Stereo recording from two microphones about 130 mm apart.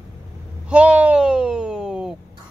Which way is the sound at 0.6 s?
10° right (ahead or behind).